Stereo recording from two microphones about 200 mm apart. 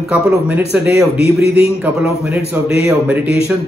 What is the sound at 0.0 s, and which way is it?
Speech, 5° right (ahead or behind).